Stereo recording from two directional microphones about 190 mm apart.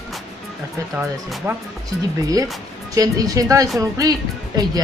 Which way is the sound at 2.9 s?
20° right (ahead or behind).